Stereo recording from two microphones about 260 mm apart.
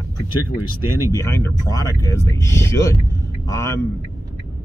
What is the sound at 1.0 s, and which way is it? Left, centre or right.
Speech, centre.